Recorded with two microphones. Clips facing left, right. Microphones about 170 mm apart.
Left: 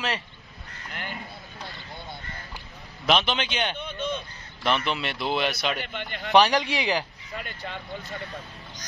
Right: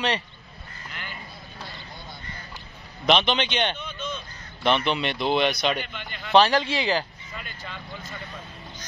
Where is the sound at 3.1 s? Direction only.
Centre (ahead or behind).